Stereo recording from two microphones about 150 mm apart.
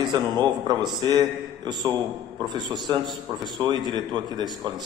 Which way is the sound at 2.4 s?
30° right (ahead or behind).